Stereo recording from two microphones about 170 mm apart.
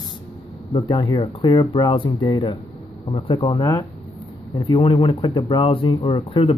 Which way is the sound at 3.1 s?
35° left (ahead or behind).